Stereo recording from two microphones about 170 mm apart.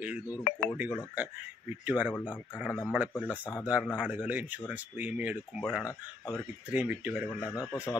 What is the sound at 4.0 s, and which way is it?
Speech, 10° right (ahead or behind).